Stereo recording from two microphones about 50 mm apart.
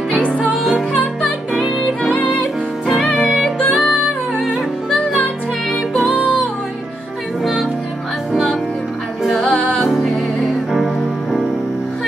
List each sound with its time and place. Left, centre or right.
0.1 s music: left
3.7 s music: left
5.7 s music: centre
9.2 s music: centre